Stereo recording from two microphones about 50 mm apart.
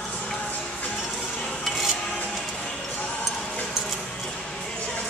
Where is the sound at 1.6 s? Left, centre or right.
Centre.